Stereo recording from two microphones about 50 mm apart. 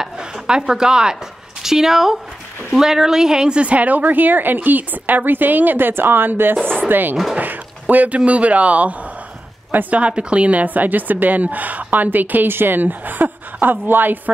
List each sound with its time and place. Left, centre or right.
0.0 s a woman's voice: centre; by 6.5 s right
6.6 s a sound: centre
6.9 s a woman's voice: right
7.3 s a sound: right
8.3 s speech: right
9.7 s speech: right
9.9 s a woman's voice: right